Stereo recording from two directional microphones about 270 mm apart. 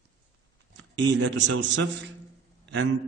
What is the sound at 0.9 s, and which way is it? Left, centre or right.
Speech, right.